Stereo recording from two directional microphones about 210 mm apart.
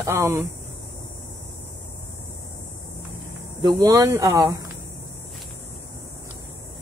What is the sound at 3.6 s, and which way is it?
Speech, 15° right (ahead or behind).